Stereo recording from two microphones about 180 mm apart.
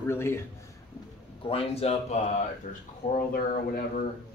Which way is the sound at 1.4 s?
35° left (ahead or behind).